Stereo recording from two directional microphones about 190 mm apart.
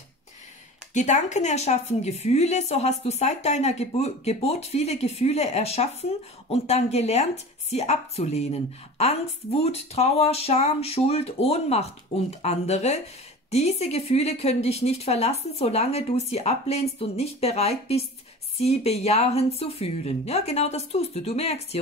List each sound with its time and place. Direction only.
0.9 s a woman's voice: 40° left (ahead or behind)